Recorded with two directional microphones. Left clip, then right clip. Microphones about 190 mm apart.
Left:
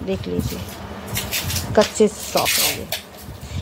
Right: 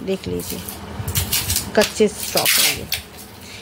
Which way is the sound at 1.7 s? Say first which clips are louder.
Left 1 dB; centre (ahead or behind).